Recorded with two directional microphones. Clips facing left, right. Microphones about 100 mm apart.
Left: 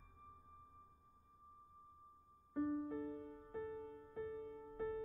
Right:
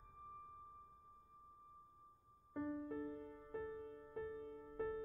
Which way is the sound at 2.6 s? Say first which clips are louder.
Left 5 dB; 20° left (ahead or behind).